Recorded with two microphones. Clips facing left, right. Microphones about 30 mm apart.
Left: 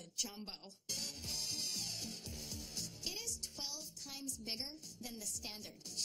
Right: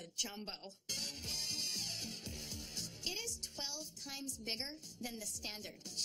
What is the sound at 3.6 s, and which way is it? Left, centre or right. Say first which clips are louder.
Speech: right 2 dB; right.